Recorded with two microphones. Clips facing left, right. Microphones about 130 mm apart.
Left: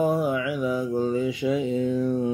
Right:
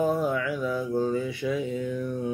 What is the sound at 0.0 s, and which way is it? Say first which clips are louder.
Mantra: left 2 dB; 10° left (ahead or behind).